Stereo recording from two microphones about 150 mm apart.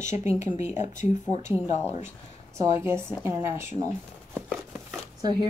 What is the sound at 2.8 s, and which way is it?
Speech, 15° right (ahead or behind).